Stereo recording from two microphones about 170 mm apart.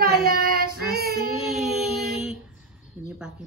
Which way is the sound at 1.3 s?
Centre (ahead or behind).